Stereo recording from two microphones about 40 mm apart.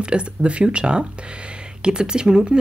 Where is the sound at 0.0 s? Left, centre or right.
Right.